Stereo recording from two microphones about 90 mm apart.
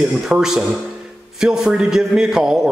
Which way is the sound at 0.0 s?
5° right (ahead or behind).